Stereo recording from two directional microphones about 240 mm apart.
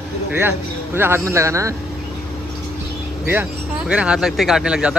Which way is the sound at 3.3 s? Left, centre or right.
Centre.